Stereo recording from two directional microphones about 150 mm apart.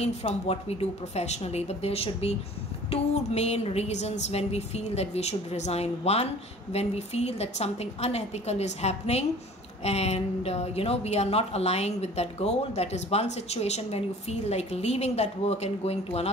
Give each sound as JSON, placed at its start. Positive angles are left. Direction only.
{"t": 0.0, "sound": "a woman's voice", "side_deg": 40}